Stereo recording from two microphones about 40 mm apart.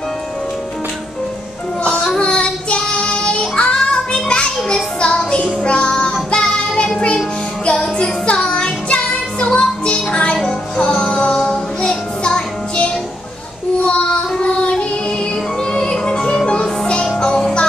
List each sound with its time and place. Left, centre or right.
1.9 s child singing: centre
5.9 s child singing: centre
6.4 s music: centre
10.8 s child singing: left
14.4 s music: left
15.7 s music: left